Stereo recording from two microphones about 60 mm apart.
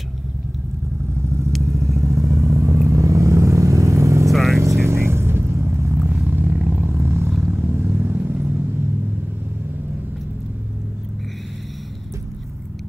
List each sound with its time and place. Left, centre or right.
1.6 s vehicle: right
4.3 s vehicle: centre
4.6 s vehicle: right